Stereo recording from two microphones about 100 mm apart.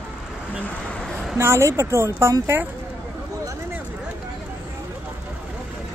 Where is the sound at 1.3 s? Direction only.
25° right (ahead or behind).